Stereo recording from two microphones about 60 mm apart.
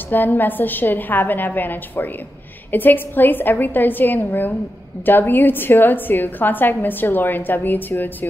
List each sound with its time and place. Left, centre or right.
0.1 s a woman's voice: left